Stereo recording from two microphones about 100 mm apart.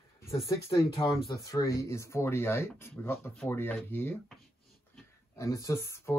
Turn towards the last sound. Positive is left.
turn(degrees=30)  # may be behind; listen again after turning